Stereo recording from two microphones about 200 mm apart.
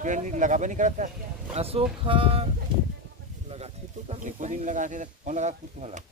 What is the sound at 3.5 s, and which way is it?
Speech, 30° right (ahead or behind).